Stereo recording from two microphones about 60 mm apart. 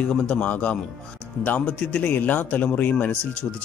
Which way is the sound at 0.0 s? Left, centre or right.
Centre.